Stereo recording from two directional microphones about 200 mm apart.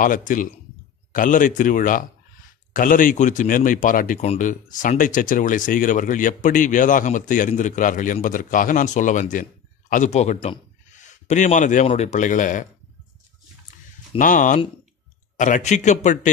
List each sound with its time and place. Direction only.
0.0 s speech: 40° left (ahead or behind)
14.1 s speech: 40° left (ahead or behind)